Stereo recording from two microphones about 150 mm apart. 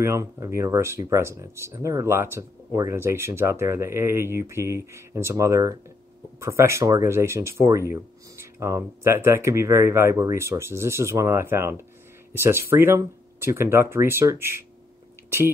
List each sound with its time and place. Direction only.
0.0 s speech: 20° right (ahead or behind)